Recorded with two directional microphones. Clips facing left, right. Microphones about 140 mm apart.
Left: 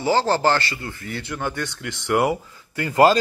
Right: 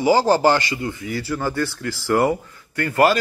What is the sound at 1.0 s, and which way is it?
A man's voice, 5° right (ahead or behind).